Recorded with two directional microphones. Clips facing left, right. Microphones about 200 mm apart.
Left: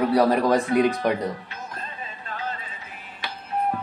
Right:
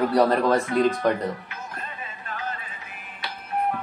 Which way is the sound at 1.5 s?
35° left (ahead or behind).